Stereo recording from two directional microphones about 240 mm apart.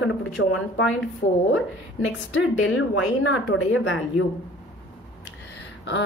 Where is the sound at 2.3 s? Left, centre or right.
Left.